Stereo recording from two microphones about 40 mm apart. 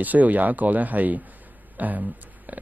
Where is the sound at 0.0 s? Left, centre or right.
Right.